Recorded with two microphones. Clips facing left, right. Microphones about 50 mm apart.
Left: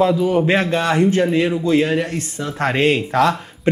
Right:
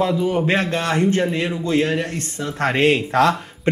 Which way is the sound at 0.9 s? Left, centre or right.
Centre.